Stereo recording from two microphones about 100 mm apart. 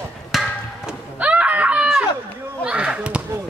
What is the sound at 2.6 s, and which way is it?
Speech, 10° right (ahead or behind).